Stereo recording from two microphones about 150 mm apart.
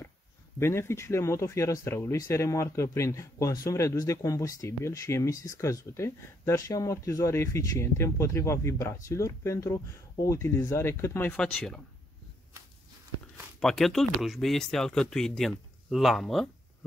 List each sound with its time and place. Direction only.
0.6 s speech: 15° left (ahead or behind)
13.6 s speech: centre (ahead or behind)